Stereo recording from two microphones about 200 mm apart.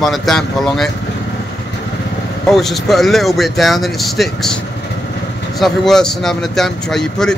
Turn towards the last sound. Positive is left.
turn(degrees=5)  # may be behind; listen again after turning